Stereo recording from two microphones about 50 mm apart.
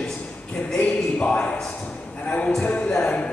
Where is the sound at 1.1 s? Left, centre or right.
Left.